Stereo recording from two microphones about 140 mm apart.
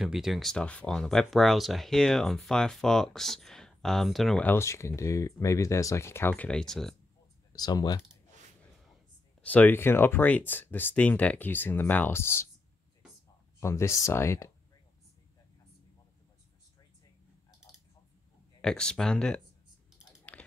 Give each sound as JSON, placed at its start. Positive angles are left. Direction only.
{"t": 0.0, "sound": "speech", "side_deg": -5}
{"t": 4.5, "sound": "speech", "side_deg": 20}
{"t": 7.5, "sound": "speech", "side_deg": 30}
{"t": 9.4, "sound": "speech", "side_deg": 10}
{"t": 13.6, "sound": "speech", "side_deg": 20}
{"t": 18.6, "sound": "speech", "side_deg": 5}
{"t": 20.3, "sound": "a sound", "side_deg": 10}